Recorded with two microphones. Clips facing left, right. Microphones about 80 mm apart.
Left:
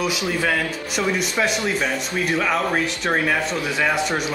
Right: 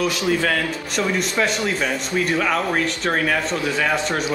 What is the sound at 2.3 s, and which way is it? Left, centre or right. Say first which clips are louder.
Speech: left 1 dB; centre.